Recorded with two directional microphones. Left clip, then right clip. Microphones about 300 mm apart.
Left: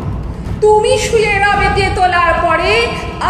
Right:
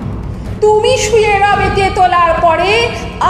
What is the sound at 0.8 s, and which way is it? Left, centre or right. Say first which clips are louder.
A woman's voice: right 2 dB; centre.